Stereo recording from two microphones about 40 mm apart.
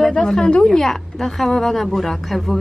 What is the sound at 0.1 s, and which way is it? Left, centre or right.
A woman's voice, centre.